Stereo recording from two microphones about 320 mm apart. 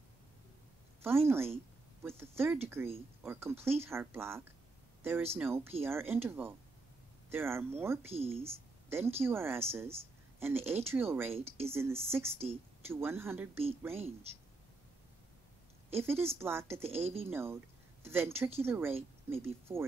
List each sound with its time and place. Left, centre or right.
1.0 s speech: centre
15.9 s speech: centre